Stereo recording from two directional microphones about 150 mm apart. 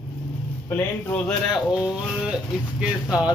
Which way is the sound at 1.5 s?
5° right (ahead or behind).